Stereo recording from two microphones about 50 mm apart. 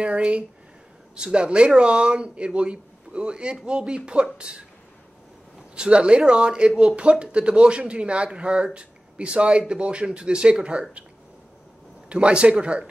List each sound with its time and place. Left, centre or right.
0.0 s speech: right
5.8 s speech: right
12.1 s speech: right